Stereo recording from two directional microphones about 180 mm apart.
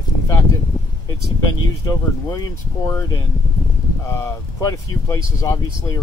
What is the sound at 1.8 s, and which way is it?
Speech, 20° left (ahead or behind).